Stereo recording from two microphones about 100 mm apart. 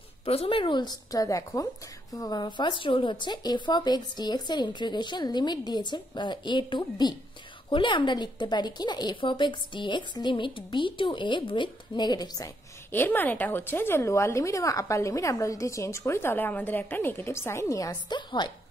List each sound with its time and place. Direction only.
0.2 s speech: 80° left; by 12.5 s 40° left (ahead or behind)
12.9 s speech: 20° left (ahead or behind)
18.1 s speech: 50° left (ahead or behind)